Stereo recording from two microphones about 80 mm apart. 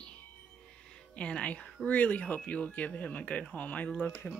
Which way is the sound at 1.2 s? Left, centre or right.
Centre.